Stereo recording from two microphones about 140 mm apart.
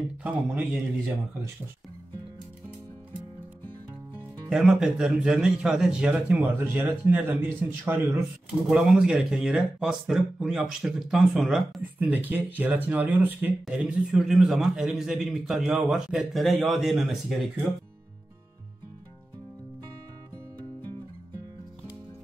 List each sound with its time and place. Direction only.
0.2 s speech: 10° right (ahead or behind)
4.5 s speech: 5° right (ahead or behind)
8.6 s speech: 5° right (ahead or behind)
12.0 s speech: 10° right (ahead or behind)